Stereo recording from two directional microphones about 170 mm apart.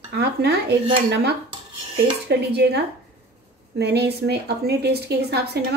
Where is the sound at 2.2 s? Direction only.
75° right (ahead or behind).